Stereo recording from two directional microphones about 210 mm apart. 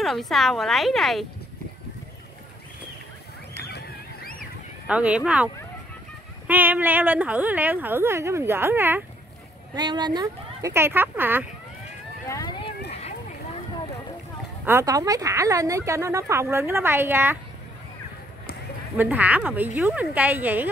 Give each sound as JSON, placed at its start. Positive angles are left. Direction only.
{"t": 0.0, "sound": "a woman's voice", "side_deg": 0}
{"t": 3.7, "sound": "a sound", "side_deg": 45}
{"t": 4.8, "sound": "a woman's voice", "side_deg": -5}
{"t": 9.8, "sound": "speech", "side_deg": -20}
{"t": 12.3, "sound": "run", "side_deg": 20}
{"t": 14.6, "sound": "speech", "side_deg": -10}
{"t": 18.9, "sound": "speech", "side_deg": -10}